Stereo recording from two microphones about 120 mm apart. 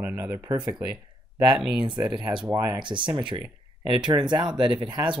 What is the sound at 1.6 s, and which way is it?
Speech, 5° right (ahead or behind).